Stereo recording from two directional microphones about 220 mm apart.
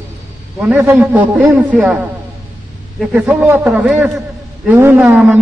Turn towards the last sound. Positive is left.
turn(degrees=-10)  # may be behind; listen again after turning